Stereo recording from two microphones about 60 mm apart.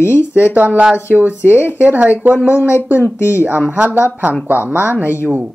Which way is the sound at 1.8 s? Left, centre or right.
Right.